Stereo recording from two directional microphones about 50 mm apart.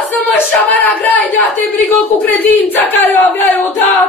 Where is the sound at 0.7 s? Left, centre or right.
Left.